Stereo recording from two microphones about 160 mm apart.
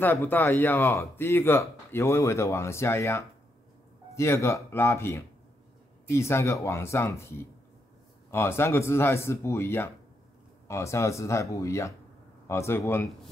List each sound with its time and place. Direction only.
0.0 s speech: 10° left (ahead or behind)